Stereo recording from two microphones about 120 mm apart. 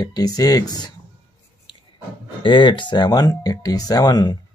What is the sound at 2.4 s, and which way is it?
Speech, 45° left (ahead or behind).